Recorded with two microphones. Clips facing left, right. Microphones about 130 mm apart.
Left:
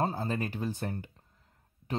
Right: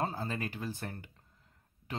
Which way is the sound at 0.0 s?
30° left (ahead or behind).